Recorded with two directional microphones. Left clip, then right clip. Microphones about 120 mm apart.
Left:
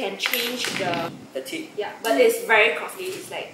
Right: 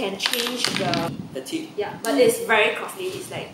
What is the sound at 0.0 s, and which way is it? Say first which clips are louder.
Speech: right 1 dB; 20° right (ahead or behind).